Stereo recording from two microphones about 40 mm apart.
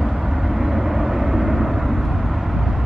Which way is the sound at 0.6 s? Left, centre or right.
Centre.